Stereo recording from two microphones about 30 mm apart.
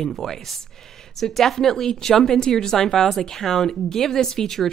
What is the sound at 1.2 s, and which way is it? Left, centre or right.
A woman's voice, centre.